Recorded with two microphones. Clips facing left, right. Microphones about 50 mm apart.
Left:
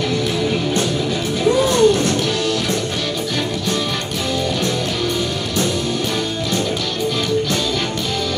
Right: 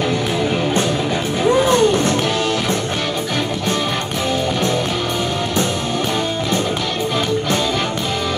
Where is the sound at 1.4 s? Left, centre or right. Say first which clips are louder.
Even; right.